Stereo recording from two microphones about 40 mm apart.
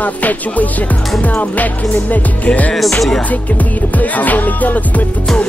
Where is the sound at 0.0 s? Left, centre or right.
Left.